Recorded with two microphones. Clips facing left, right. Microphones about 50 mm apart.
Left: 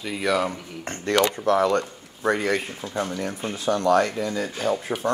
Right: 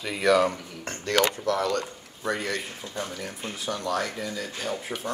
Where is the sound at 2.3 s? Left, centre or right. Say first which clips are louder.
Left 6 dB; left.